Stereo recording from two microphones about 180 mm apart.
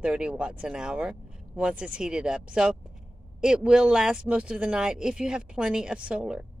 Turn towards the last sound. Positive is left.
turn(degrees=-5)  # may be behind; listen again after turning